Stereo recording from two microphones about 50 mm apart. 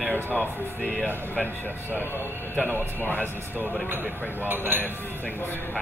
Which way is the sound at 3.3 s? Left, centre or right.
Right.